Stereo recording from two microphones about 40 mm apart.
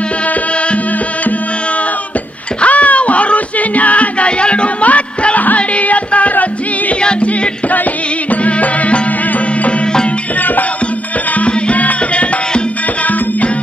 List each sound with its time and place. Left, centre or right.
2.6 s music: left
7.0 s music: left
8.3 s music: left
11.3 s music: left